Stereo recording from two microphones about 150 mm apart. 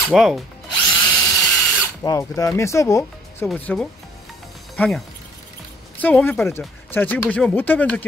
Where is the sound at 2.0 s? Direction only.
20° left (ahead or behind).